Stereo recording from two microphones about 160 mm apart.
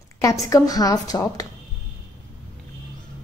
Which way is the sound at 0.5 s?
25° left (ahead or behind).